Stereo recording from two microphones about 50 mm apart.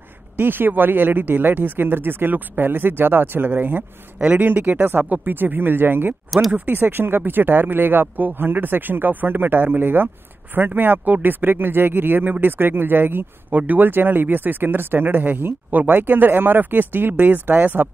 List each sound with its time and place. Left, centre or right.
0.4 s speech: right
13.5 s speech: right